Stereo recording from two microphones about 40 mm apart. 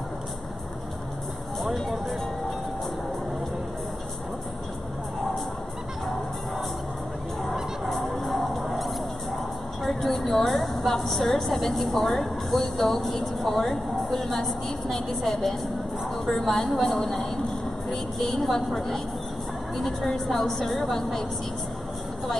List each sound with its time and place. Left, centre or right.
1.6 s music: centre
7.9 s music: centre
9.8 s a woman's voice: centre